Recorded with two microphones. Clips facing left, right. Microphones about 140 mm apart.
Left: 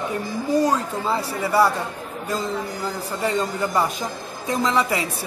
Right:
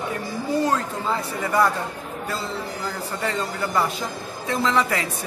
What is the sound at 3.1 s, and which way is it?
Speech, 15° left (ahead or behind).